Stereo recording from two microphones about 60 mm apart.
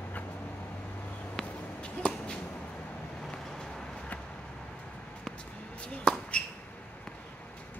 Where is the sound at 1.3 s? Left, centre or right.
Centre.